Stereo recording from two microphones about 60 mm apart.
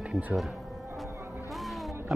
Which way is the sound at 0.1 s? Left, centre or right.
Centre.